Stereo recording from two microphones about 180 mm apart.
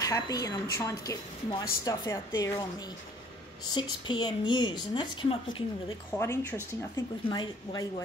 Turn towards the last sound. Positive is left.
turn(degrees=25)  # may be behind; listen again after turning